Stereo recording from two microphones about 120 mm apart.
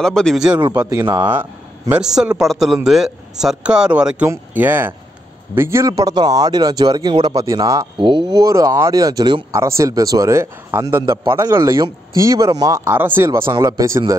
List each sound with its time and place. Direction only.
0.0 s a man's voice: 5° left (ahead or behind)
0.6 s a man's voice: 40° right (ahead or behind)
1.3 s speech: 15° right (ahead or behind)
2.0 s a man's voice: 5° right (ahead or behind); by 7.8 s 30° right (ahead or behind)
8.0 s a sound: 45° right (ahead or behind)
8.3 s speech: 30° right (ahead or behind)
12.9 s speech: 15° right (ahead or behind)